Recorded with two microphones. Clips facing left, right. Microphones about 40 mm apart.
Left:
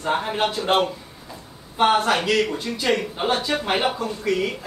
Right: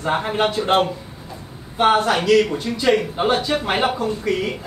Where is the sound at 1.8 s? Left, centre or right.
Centre.